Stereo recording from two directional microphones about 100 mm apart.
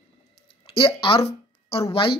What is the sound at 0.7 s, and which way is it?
Speech, 60° left (ahead or behind).